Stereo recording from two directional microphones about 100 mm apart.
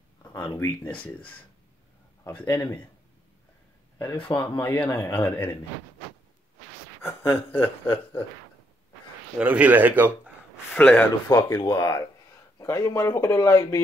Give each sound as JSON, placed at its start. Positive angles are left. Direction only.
{"t": 0.3, "sound": "a sound", "side_deg": 30}
{"t": 0.8, "sound": "speech", "side_deg": 15}
{"t": 2.4, "sound": "speech", "side_deg": 40}
{"t": 4.4, "sound": "speech", "side_deg": 20}
{"t": 7.0, "sound": "a man's voice", "side_deg": 25}
{"t": 9.4, "sound": "speech", "side_deg": -15}
{"t": 10.7, "sound": "speech", "side_deg": 15}
{"t": 11.6, "sound": "speech", "side_deg": 40}